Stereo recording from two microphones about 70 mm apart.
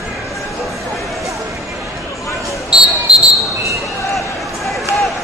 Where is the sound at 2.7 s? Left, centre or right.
Centre.